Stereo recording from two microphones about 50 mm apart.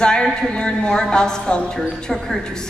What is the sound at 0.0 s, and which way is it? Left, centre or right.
A woman's voice, centre.